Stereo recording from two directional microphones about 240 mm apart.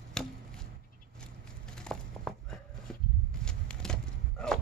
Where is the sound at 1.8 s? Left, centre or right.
Centre.